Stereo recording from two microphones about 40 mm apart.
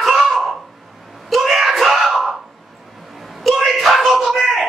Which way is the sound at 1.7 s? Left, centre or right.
Centre.